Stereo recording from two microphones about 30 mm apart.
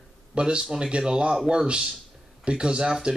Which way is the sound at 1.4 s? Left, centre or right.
Right.